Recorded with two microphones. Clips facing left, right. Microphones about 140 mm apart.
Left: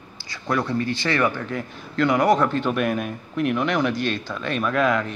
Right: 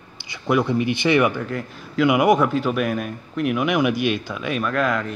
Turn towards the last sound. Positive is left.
turn(degrees=0)  # may be behind; listen again after turning